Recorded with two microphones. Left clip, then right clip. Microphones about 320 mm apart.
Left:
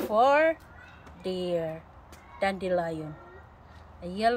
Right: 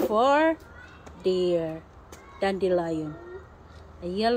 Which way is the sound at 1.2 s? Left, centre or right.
Left.